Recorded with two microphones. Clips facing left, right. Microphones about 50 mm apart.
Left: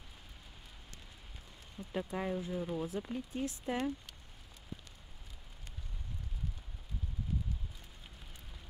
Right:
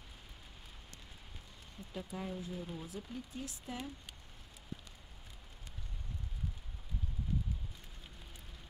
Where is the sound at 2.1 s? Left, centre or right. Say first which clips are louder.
Left 4 dB; left.